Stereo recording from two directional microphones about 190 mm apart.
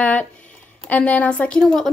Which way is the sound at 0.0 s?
10° left (ahead or behind).